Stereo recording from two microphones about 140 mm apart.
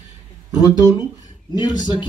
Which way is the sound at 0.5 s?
25° left (ahead or behind).